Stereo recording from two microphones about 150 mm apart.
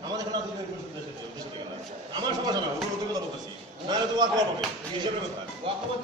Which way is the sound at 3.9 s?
25° right (ahead or behind).